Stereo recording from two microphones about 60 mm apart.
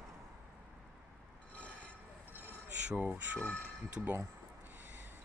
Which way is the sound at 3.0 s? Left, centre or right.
Right.